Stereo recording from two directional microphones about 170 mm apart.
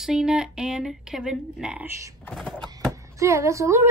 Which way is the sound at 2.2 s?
5° left (ahead or behind).